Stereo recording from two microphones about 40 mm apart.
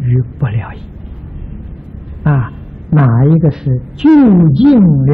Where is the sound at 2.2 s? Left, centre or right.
Centre.